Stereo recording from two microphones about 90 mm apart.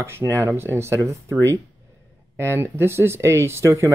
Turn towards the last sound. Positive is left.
turn(degrees=-30)  # may be behind; listen again after turning